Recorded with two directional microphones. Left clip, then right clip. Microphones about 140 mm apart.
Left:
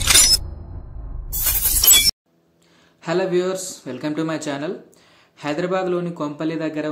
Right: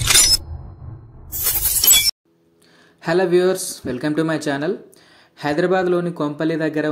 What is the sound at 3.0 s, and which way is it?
A man's voice, 35° right (ahead or behind).